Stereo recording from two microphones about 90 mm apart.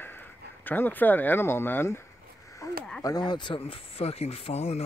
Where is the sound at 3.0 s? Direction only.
50° left (ahead or behind); by 4.5 s 90° left.